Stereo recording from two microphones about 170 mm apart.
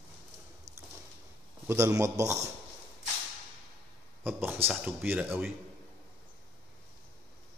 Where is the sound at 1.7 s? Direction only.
15° right (ahead or behind).